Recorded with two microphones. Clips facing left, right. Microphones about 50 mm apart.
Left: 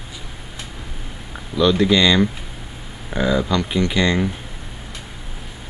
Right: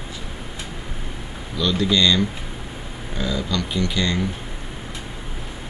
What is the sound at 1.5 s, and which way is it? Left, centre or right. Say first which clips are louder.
Speech: left 5 dB; centre.